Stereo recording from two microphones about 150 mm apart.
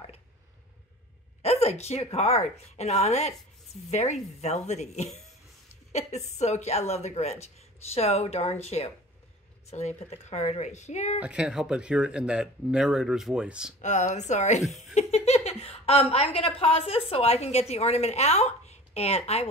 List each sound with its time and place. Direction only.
1.4 s a woman's voice: 45° left (ahead or behind)
11.1 s speech: 5° right (ahead or behind)
13.7 s a woman's voice: 50° left (ahead or behind)